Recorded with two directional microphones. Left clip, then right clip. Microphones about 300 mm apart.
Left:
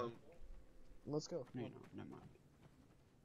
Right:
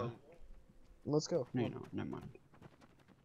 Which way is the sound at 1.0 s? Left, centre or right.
Right.